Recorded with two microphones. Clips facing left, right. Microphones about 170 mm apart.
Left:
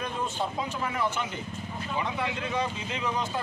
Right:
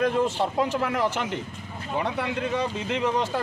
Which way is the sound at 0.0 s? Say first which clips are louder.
Right 8 dB; 90° right.